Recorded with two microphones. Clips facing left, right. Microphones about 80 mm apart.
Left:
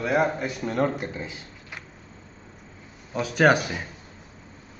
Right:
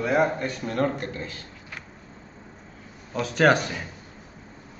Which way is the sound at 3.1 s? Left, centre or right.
Centre.